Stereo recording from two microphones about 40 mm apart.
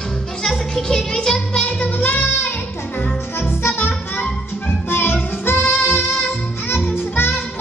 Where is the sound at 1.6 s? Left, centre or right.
Left.